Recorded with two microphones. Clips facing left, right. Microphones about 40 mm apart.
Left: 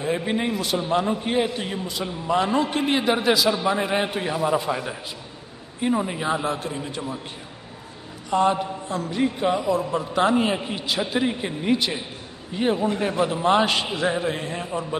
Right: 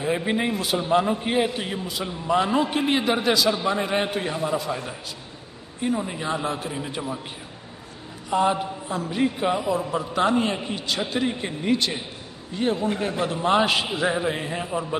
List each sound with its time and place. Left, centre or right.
0.0 s a man's voice: centre
4.5 s a man's voice: left
6.4 s a man's voice: centre
8.3 s a man's voice: centre
10.1 s a man's voice: centre
13.2 s a man's voice: centre